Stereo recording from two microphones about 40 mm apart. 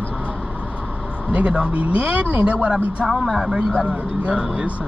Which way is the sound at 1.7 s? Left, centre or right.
Right.